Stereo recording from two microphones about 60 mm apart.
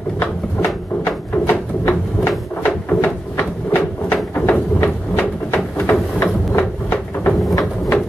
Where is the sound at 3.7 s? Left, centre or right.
Left.